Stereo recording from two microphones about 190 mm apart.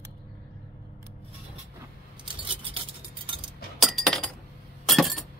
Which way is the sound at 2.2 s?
25° right (ahead or behind).